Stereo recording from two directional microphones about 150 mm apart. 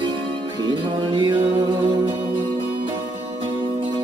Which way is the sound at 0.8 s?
35° right (ahead or behind).